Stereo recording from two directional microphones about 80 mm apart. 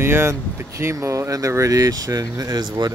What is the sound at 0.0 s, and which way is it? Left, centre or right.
Speech, right.